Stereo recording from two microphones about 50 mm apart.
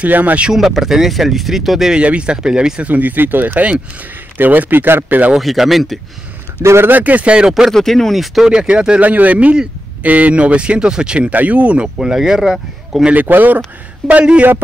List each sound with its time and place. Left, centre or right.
0.0 s speech: right
0.5 s speech: centre
1.9 s speech: right
2.8 s speech: right
5.4 s speech: centre
6.6 s a man's voice: right
6.9 s speech: right
7.4 s speech: centre
7.7 s speech: centre
8.5 s speech: centre
9.0 s speech: right
12.0 s speech: centre
13.1 s speech: right
14.0 s a man's voice: centre